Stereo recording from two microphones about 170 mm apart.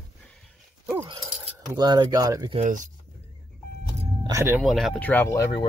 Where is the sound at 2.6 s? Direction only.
50° right (ahead or behind).